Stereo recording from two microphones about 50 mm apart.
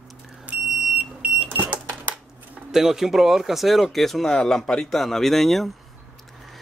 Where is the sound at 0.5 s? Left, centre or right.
Right.